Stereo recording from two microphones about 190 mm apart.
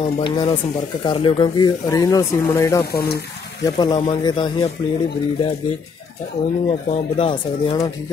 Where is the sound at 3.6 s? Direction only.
25° left (ahead or behind).